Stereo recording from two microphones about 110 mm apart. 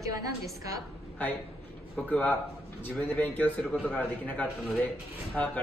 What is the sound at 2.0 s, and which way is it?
A man's voice, 15° left (ahead or behind).